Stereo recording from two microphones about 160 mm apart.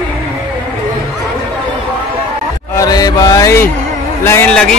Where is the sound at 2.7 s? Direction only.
25° left (ahead or behind).